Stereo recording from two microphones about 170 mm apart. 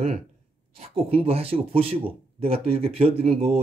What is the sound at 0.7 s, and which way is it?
Speech, 35° right (ahead or behind).